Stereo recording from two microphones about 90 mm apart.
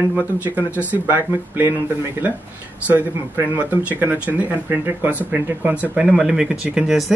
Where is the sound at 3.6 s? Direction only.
20° right (ahead or behind).